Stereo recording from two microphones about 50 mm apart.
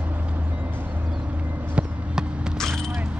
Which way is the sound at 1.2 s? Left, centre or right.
Right.